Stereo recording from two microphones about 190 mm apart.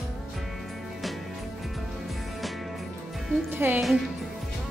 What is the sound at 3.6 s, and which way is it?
Speech, 10° right (ahead or behind).